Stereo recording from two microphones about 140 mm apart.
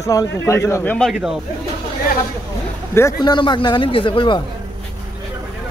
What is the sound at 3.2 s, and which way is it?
Speech, 30° left (ahead or behind).